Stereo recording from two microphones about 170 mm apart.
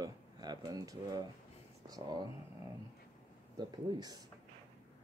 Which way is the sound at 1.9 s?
25° right (ahead or behind).